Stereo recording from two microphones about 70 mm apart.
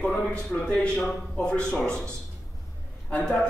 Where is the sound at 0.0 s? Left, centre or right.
Centre.